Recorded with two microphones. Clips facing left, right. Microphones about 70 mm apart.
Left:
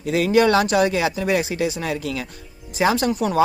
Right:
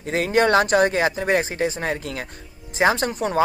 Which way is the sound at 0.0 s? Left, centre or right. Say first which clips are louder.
Left 2 dB; right.